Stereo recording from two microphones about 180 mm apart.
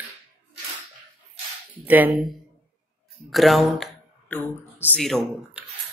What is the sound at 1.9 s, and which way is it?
Speech, 10° right (ahead or behind).